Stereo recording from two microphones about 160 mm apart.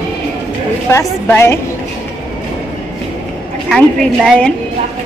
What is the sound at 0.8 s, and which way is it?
Speech, 15° left (ahead or behind).